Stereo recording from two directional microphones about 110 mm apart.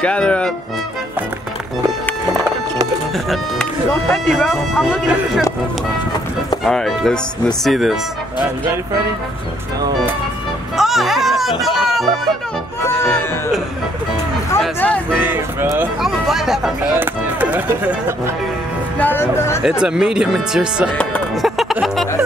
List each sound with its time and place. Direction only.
0.0 s speech: 10° left (ahead or behind)
4.1 s speech: 10° left (ahead or behind)
6.6 s speech: centre (ahead or behind)
10.8 s music: centre (ahead or behind)
14.8 s speech: 10° left (ahead or behind)
15.1 s speech: 20° right (ahead or behind)
16.0 s speech: centre (ahead or behind)
16.9 s speech: 15° right (ahead or behind)
18.9 s speech: 20° left (ahead or behind)
19.6 s speech: 5° right (ahead or behind)
21.4 s music: centre (ahead or behind)